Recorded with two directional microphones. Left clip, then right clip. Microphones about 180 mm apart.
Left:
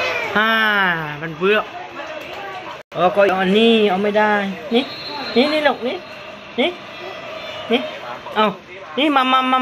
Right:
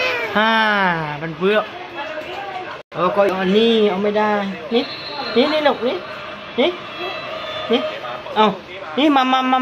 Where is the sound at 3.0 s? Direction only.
Centre (ahead or behind).